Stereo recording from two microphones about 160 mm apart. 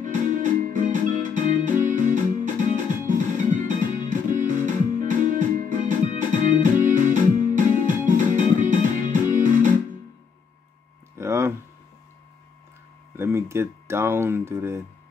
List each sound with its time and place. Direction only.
0.0 s music: 55° right (ahead or behind)
11.1 s a sound: 15° right (ahead or behind)
13.1 s speech: 15° right (ahead or behind)